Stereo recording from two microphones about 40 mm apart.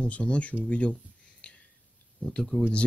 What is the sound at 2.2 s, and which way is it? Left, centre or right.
Speech, left.